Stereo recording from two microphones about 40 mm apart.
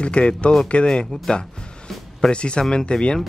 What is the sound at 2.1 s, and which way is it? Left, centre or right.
Speech, left.